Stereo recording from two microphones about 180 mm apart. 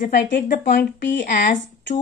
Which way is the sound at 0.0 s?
50° left (ahead or behind).